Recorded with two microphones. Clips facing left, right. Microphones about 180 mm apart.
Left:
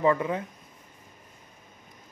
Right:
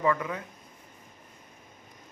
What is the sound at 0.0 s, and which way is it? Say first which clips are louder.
Speech: left 4 dB; 25° left (ahead or behind).